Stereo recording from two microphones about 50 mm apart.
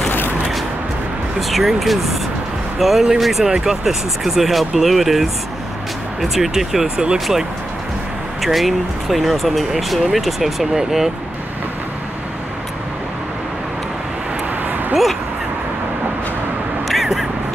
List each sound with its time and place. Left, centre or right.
1.4 s speech: centre
8.4 s speech: centre
16.8 s vehicle: centre